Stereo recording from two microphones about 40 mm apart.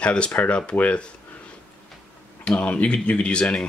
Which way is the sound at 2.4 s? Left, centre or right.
Left.